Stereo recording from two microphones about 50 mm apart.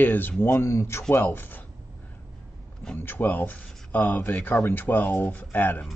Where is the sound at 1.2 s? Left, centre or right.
Left.